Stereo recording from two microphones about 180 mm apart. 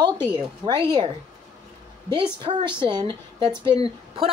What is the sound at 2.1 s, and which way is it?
A woman's voice, 25° right (ahead or behind).